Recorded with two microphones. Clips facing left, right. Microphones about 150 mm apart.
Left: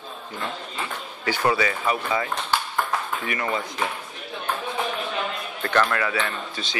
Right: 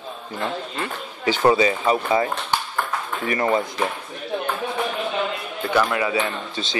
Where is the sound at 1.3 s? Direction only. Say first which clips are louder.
Right 5 dB; 20° right (ahead or behind).